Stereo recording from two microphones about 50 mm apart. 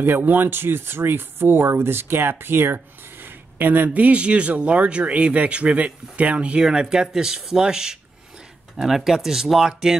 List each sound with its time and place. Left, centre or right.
0.0 s speech: right
6.6 s speech: centre